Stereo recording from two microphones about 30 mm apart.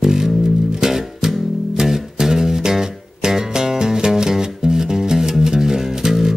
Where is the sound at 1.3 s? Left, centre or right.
Centre.